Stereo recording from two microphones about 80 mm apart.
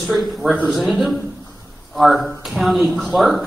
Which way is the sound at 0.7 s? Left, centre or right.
Centre.